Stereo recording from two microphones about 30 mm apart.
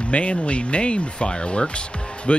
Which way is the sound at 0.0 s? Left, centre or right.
Left.